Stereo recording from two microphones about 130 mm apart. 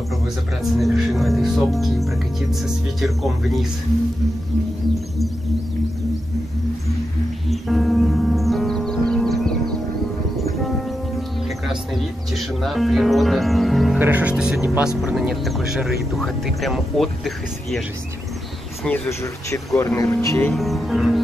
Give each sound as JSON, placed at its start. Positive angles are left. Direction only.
{"t": 0.6, "sound": "speech", "side_deg": 0}
{"t": 7.4, "sound": "music", "side_deg": 0}
{"t": 10.6, "sound": "speech", "side_deg": 0}
{"t": 13.9, "sound": "speech", "side_deg": -15}
{"t": 18.9, "sound": "speech", "side_deg": 20}
{"t": 20.5, "sound": "speech", "side_deg": 0}